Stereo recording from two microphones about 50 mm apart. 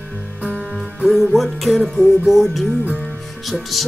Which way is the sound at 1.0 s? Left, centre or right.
Centre.